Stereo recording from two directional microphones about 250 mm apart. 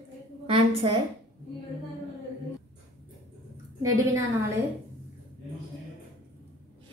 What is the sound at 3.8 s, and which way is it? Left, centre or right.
Speech, centre.